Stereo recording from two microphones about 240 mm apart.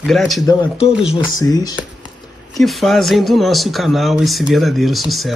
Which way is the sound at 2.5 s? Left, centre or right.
Centre.